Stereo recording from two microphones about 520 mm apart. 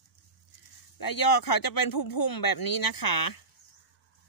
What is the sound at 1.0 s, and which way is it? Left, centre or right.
Speech, left.